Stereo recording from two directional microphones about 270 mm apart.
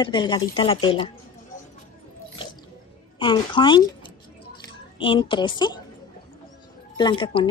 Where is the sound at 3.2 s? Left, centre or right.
Centre.